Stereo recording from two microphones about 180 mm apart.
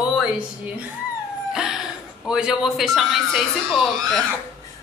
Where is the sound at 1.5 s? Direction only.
5° right (ahead or behind).